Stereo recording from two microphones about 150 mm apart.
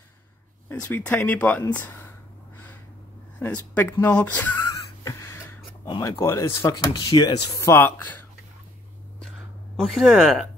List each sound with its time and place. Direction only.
0.7 s speech: 10° left (ahead or behind)
3.3 s speech: 10° left (ahead or behind)
4.6 s music: 20° left (ahead or behind)
5.9 s speech: 25° left (ahead or behind)
7.6 s speech: 15° left (ahead or behind)
9.8 s speech: centre (ahead or behind)